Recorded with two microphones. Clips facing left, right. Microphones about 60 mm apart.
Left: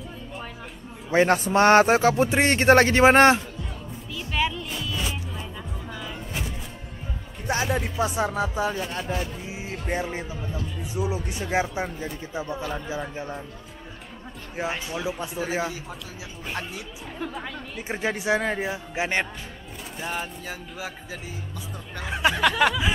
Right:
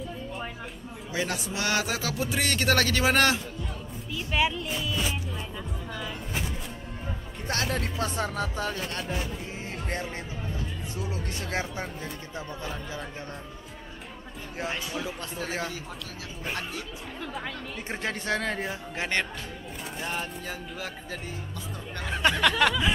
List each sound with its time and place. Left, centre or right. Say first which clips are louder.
0.0 s music: right 2 dB; centre
1.1 s a man's voice: left 12 dB; left
4.1 s music: even; centre
7.4 s speech: left 4 dB; centre
14.6 s speech: left 4 dB; centre
21.9 s a sound: left 2 dB; centre